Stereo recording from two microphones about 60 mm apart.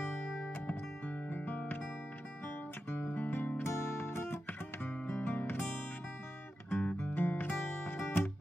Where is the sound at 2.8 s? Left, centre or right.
Left.